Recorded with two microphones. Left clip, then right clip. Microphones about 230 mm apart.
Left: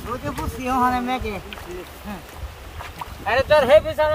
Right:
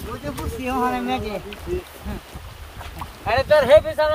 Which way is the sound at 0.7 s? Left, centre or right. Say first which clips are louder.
Left 2 dB; left.